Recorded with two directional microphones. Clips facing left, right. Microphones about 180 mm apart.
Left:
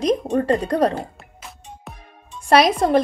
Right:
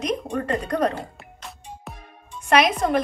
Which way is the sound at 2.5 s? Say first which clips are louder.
Left 4 dB; 35° left (ahead or behind).